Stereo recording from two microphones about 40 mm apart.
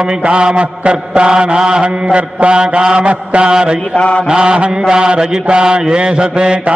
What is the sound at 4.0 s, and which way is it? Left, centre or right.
Mantra, left.